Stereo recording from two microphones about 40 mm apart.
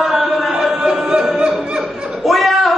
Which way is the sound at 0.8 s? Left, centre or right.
Right.